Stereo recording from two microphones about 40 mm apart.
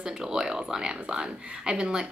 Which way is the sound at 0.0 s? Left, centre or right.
Centre.